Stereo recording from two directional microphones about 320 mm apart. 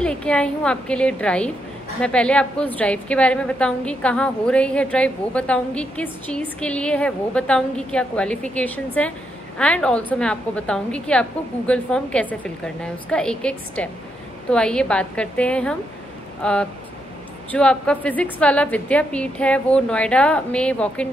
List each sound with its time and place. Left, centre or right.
0.0 s a woman's voice: centre